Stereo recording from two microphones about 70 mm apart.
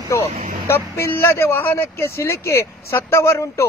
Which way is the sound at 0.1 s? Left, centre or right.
Left.